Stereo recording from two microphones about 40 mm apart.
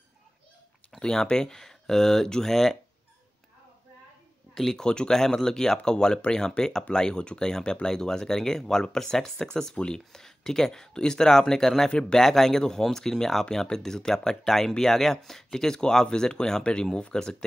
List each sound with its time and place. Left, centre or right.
0.9 s speech: centre
4.6 s speech: centre
4.8 s speech: left